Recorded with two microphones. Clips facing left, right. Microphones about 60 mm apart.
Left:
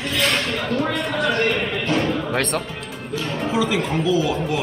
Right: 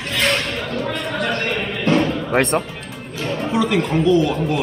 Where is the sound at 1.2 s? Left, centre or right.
Right.